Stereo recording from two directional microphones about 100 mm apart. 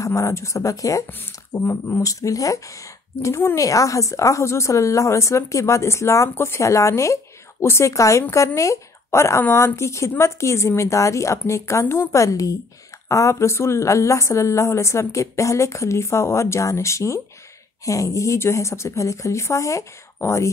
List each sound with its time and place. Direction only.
0.0 s speech: 30° left (ahead or behind)